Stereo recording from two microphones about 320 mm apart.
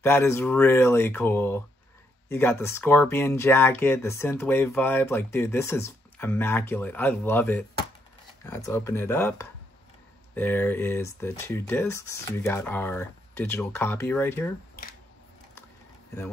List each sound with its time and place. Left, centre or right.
0.0 s speech: centre